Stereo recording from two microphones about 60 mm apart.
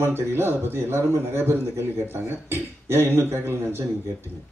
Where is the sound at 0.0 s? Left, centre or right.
Right.